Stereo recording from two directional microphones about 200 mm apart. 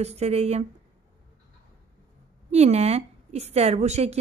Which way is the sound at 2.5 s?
30° right (ahead or behind).